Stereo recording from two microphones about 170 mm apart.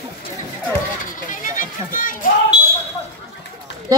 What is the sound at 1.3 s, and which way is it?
Run, 50° left (ahead or behind).